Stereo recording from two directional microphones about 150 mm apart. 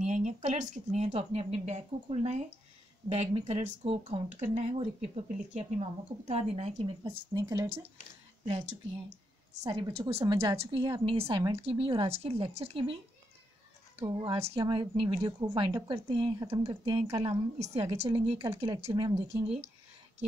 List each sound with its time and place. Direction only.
0.0 s speech: 50° right (ahead or behind)
7.0 s speech: 25° right (ahead or behind)
8.5 s speech: 50° right (ahead or behind)
9.7 s speech: 25° right (ahead or behind)
9.9 s a woman's voice: 40° right (ahead or behind)
10.3 s a woman's voice: 20° right (ahead or behind)
10.6 s a woman's voice: 35° right (ahead or behind)
14.0 s a woman's voice: 35° right (ahead or behind)
18.4 s speech: 20° right (ahead or behind)
18.9 s a woman's voice: 30° right (ahead or behind)